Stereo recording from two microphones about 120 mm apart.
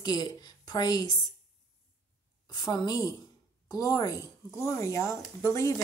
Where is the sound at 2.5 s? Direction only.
35° left (ahead or behind).